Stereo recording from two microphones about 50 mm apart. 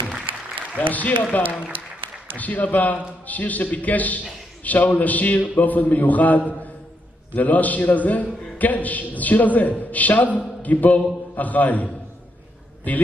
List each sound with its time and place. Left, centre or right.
0.7 s a man's voice: left
2.3 s a man's voice: left